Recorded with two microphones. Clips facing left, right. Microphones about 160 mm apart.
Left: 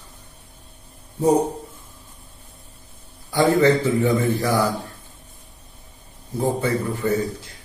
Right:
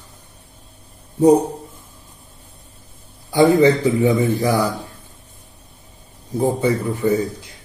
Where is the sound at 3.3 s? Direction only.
15° right (ahead or behind).